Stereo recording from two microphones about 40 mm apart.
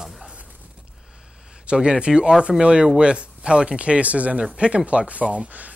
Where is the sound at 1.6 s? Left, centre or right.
Right.